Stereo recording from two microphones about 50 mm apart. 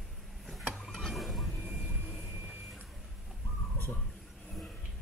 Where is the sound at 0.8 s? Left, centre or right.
Centre.